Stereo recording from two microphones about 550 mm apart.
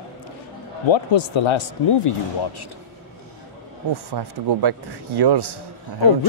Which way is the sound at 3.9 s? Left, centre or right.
Right.